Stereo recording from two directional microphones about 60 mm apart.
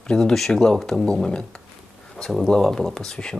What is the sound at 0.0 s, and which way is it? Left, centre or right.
Speech, centre.